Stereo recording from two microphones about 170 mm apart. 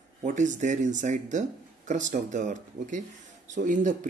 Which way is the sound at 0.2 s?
45° right (ahead or behind).